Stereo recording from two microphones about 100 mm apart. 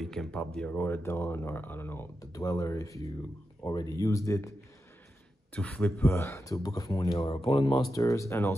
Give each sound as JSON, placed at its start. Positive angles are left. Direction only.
{"t": 0.0, "sound": "speech", "side_deg": 5}
{"t": 2.3, "sound": "speech", "side_deg": 35}
{"t": 5.5, "sound": "a man's voice", "side_deg": 15}
{"t": 6.0, "sound": "speech", "side_deg": 25}
{"t": 7.2, "sound": "speech", "side_deg": 75}
{"t": 7.9, "sound": "speech", "side_deg": 30}